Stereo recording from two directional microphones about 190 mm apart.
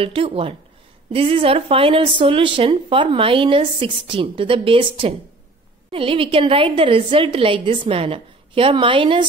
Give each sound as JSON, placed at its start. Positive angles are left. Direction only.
{"t": 0.0, "sound": "speech", "side_deg": -30}